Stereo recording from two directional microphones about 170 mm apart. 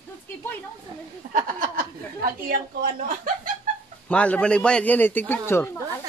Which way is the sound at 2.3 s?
55° right (ahead or behind).